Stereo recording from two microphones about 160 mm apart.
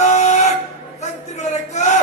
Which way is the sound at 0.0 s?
50° left (ahead or behind).